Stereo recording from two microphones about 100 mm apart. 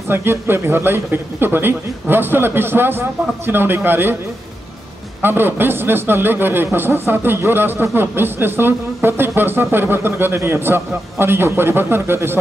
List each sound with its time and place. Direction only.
0.1 s speech: 25° right (ahead or behind)
5.2 s speech: 20° right (ahead or behind)